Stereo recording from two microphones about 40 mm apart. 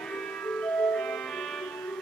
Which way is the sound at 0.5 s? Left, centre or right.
Left.